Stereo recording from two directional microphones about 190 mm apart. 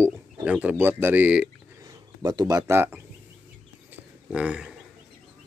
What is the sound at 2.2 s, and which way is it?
Speech, 20° right (ahead or behind).